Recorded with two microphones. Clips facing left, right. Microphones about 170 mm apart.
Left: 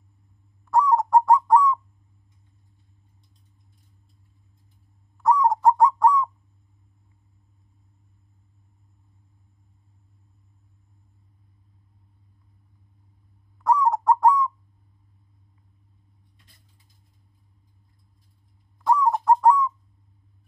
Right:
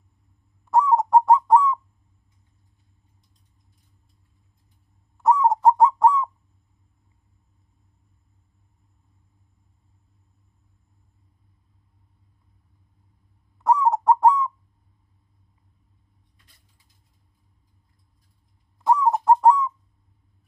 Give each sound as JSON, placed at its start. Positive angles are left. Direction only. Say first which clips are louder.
{"t": 0.7, "sound": "owl", "louder": "right 1 dB", "side_deg": -20}
{"t": 5.1, "sound": "bird", "louder": "right 1 dB", "side_deg": -25}
{"t": 13.6, "sound": "owl", "louder": "right 1 dB", "side_deg": -25}
{"t": 18.9, "sound": "owl", "louder": "right 1 dB", "side_deg": -25}
{"t": 19.2, "sound": "bird", "louder": "right 2 dB", "side_deg": -25}